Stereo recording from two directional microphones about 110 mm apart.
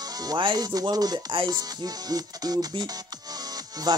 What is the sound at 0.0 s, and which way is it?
Speech, 35° right (ahead or behind).